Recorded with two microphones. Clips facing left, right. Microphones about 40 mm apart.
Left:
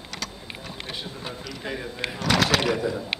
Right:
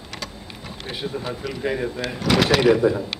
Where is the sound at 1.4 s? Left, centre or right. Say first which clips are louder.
Right 9 dB; centre.